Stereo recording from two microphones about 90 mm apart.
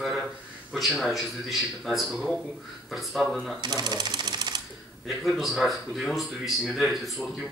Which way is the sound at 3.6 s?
50° right (ahead or behind).